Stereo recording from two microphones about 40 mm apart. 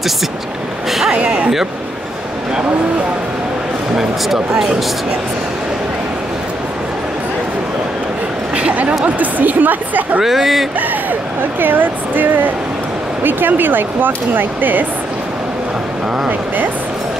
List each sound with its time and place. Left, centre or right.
1.1 s speech: right
3.9 s speech: centre
8.5 s a sound: right
9.0 s a woman's voice: right
10.2 s speech: centre
11.6 s a woman's voice: right